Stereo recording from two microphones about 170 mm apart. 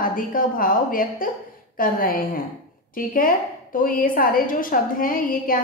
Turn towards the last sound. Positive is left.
turn(degrees=55)  # may be behind; listen again after turning